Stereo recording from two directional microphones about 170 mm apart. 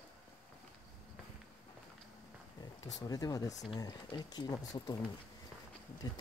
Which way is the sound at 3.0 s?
20° left (ahead or behind).